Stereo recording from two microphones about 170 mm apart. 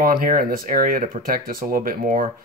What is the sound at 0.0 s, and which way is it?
Speech, 55° right (ahead or behind).